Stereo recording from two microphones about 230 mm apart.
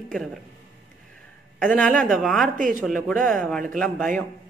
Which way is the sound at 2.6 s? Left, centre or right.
Right.